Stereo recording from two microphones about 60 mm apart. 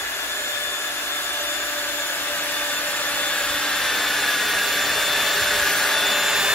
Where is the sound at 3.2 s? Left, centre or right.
Centre.